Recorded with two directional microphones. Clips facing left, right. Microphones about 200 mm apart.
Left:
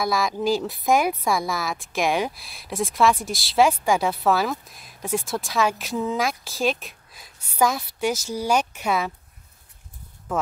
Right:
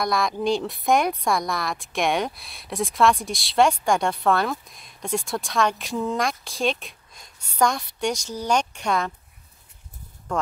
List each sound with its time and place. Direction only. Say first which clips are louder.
0.0 s a woman's voice: even; centre (ahead or behind)